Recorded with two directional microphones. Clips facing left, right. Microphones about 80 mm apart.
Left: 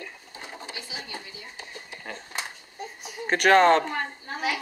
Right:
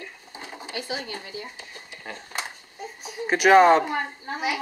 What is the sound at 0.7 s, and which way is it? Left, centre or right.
Speech, right.